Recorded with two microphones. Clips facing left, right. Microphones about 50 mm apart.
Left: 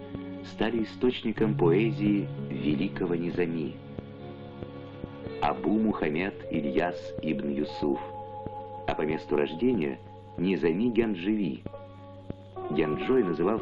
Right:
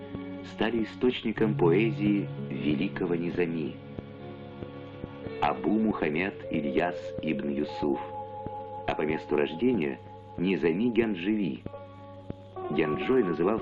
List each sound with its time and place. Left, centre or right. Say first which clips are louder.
0.2 s speech: even; centre
1.4 s speech: even; centre
5.2 s music: right 1 dB; centre
5.5 s speech: left 1 dB; centre
7.9 s speech: even; centre
12.5 s music: even; centre
13.0 s speech: even; centre